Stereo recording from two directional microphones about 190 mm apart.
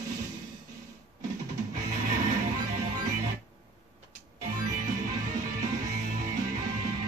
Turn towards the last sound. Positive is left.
turn(degrees=-40)  # may be behind; listen again after turning